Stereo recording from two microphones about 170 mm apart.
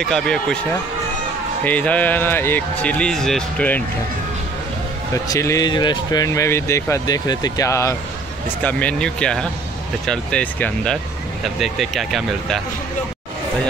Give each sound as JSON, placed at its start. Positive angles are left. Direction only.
{"t": 0.0, "sound": "speech", "side_deg": 5}
{"t": 1.6, "sound": "speech", "side_deg": 10}
{"t": 5.1, "sound": "speech", "side_deg": 20}